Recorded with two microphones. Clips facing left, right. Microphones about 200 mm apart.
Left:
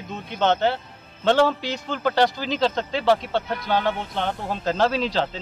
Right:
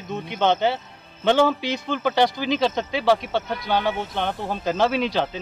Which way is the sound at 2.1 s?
15° right (ahead or behind).